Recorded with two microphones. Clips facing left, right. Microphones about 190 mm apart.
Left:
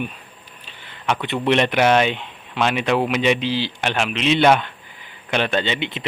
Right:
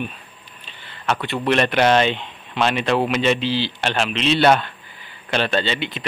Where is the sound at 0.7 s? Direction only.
10° left (ahead or behind).